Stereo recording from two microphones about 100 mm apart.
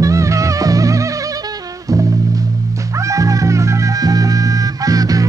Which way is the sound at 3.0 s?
35° right (ahead or behind).